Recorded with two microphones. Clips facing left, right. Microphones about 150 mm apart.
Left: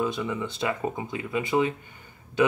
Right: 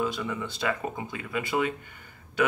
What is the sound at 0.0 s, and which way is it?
Speech, 20° left (ahead or behind).